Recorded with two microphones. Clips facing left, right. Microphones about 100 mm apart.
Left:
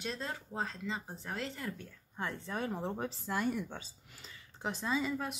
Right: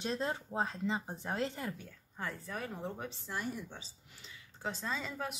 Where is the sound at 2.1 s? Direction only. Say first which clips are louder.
Left 3 dB; 25° left (ahead or behind).